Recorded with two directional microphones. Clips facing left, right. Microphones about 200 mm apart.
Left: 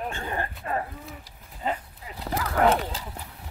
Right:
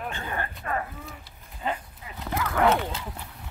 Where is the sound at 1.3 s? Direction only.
35° left (ahead or behind).